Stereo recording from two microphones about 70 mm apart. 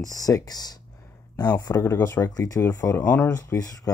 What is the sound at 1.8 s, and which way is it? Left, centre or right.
Speech, left.